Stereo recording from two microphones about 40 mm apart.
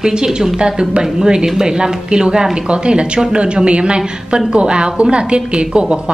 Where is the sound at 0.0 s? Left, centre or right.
Centre.